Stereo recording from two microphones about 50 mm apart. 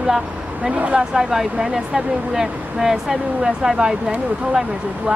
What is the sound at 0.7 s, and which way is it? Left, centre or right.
Speech, right.